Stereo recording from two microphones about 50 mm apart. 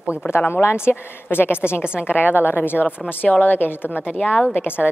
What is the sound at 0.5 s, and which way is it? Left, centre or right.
A woman's voice, left.